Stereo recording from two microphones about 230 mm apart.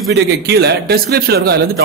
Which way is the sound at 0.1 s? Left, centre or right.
Right.